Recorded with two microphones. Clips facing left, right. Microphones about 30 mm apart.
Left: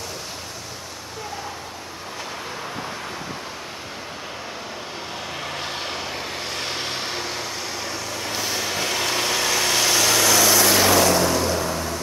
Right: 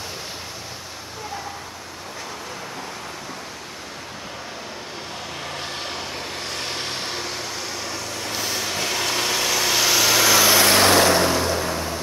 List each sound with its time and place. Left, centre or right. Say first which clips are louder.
5.4 s vehicle: left 1 dB; centre
10.7 s vehicle: right 1 dB; right
11.2 s vehicle: even; right
11.5 s vehicle: even; centre